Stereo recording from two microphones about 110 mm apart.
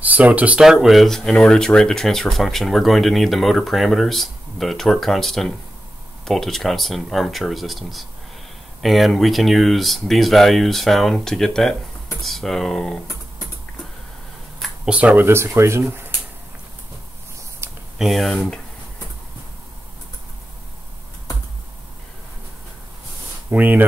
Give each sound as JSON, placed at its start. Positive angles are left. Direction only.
{"t": 0.0, "sound": "speech", "side_deg": -15}
{"t": 14.9, "sound": "speech", "side_deg": -10}
{"t": 17.6, "sound": "a sound", "side_deg": -25}
{"t": 17.9, "sound": "speech", "side_deg": 0}
{"t": 23.5, "sound": "speech", "side_deg": -15}